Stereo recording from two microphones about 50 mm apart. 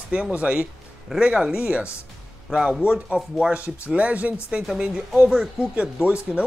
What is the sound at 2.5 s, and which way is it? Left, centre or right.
Speech, centre.